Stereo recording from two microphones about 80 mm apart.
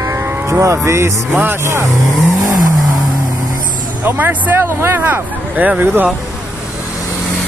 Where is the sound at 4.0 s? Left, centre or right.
Right.